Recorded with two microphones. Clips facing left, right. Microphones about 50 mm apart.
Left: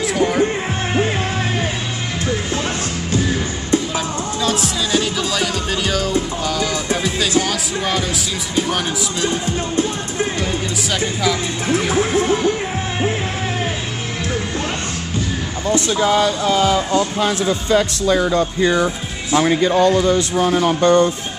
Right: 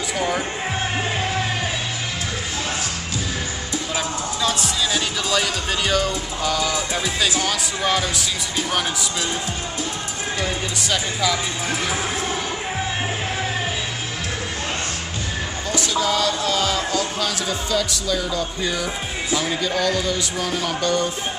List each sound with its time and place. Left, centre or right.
0.2 s music: centre
3.9 s music: centre
6.4 s speech: centre
10.4 s speech: centre
11.6 s music: left
15.7 s speech: left